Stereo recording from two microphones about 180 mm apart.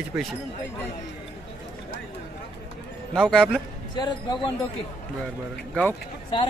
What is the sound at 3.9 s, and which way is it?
Speech, 25° left (ahead or behind).